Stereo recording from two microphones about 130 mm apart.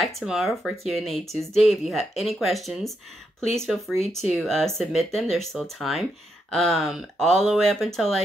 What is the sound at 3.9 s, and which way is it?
Speech, 55° left (ahead or behind).